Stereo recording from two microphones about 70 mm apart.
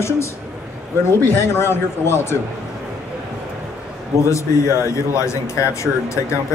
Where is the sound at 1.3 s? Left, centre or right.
Left.